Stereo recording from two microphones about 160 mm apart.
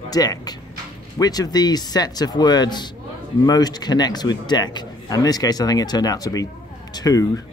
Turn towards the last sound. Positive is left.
turn(degrees=20)  # may be behind; listen again after turning